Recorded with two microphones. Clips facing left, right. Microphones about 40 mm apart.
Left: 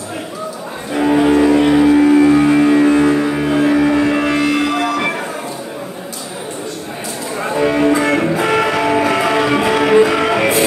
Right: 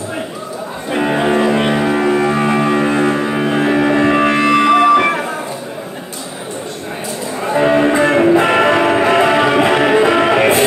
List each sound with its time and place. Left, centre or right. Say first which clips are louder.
0.9 s music: left 2 dB; right
7.4 s music: right 2 dB; right